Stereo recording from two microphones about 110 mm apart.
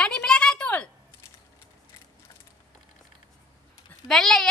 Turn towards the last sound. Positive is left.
turn(degrees=5)  # may be behind; listen again after turning